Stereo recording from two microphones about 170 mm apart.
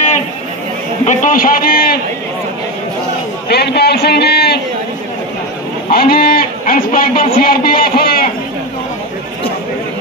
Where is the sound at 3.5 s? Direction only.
70° left (ahead or behind).